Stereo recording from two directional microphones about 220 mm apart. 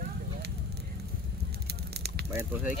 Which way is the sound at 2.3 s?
10° right (ahead or behind).